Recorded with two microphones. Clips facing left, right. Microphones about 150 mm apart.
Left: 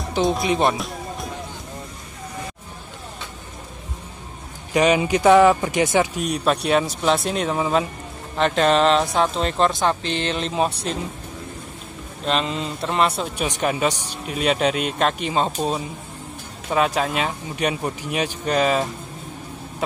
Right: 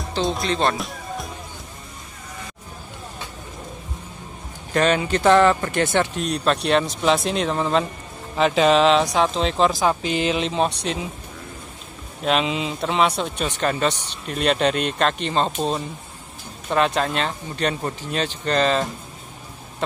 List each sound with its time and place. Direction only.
0.2 s speech: 15° left (ahead or behind)
0.7 s music: centre (ahead or behind)
4.7 s speech: 10° left (ahead or behind)
12.3 s speech: centre (ahead or behind)